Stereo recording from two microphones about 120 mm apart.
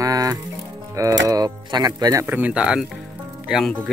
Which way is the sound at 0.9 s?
25° right (ahead or behind).